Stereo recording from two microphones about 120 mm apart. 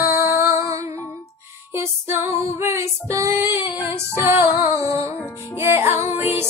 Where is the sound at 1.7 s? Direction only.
20° right (ahead or behind).